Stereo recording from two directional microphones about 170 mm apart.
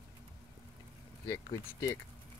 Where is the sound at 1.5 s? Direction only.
20° left (ahead or behind).